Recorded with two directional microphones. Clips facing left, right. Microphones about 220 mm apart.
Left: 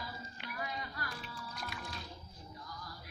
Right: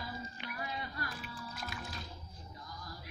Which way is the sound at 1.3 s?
5° right (ahead or behind).